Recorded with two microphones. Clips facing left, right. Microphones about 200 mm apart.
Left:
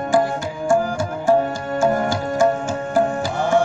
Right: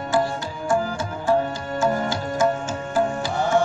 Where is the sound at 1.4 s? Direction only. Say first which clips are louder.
Left 4 dB; 50° left (ahead or behind).